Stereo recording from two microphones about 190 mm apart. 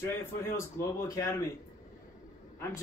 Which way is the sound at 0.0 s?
15° left (ahead or behind).